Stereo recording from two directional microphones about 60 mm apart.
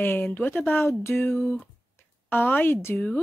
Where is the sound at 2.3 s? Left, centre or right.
Left.